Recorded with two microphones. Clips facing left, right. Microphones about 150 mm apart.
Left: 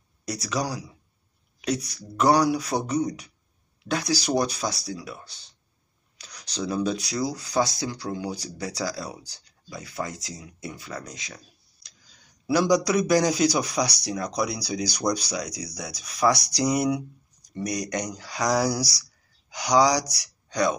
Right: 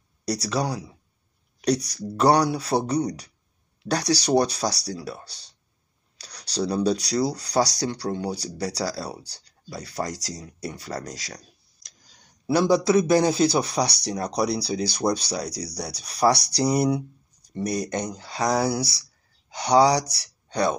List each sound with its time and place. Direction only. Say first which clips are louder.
0.2 s speech: right 3 dB; 35° right (ahead or behind)
12.4 s speech: right 2 dB; 30° right (ahead or behind)